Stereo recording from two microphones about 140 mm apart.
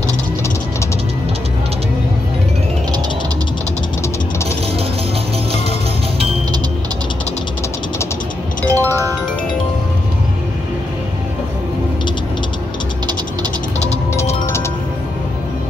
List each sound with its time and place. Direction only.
8.6 s music: 20° right (ahead or behind)